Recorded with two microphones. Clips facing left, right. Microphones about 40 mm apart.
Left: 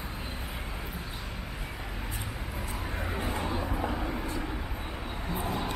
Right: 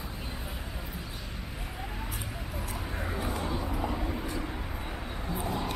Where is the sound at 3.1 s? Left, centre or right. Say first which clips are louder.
Even; left.